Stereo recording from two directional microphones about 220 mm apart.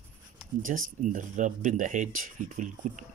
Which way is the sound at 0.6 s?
35° right (ahead or behind).